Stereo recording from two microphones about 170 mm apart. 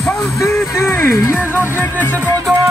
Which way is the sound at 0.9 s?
15° left (ahead or behind).